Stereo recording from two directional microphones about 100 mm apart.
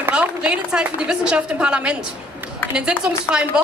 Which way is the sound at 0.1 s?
10° right (ahead or behind).